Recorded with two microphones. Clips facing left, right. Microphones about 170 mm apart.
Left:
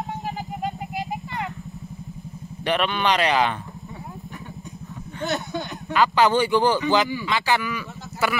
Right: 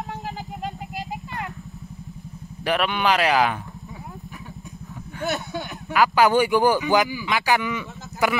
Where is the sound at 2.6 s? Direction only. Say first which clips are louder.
Even; 5° right (ahead or behind).